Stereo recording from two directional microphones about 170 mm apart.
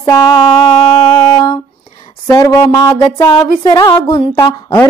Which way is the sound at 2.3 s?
20° left (ahead or behind).